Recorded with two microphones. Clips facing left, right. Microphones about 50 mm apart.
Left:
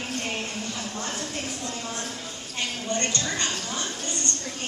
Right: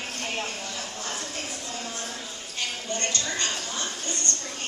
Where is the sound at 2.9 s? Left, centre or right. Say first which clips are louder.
Left 2 dB; left.